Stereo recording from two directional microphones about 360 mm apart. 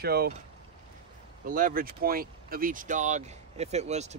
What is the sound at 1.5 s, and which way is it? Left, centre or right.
A man's voice, right.